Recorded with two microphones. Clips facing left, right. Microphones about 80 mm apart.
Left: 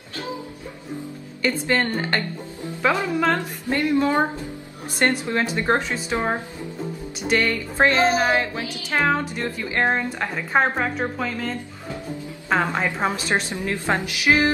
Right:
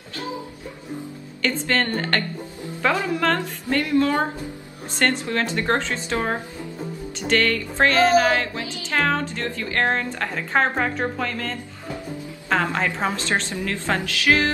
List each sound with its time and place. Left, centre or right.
1.4 s a woman's voice: centre
3.3 s music: left
4.9 s a woman's voice: centre
7.2 s music: centre
8.8 s a woman's voice: centre